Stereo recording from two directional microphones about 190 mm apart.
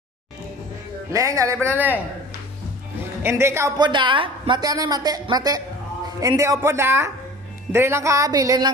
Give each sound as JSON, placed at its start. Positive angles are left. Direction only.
{"t": 1.1, "sound": "speech", "side_deg": -15}
{"t": 3.2, "sound": "a woman's voice", "side_deg": -15}